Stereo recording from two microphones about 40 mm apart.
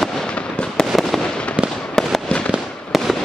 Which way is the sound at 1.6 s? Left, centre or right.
Right.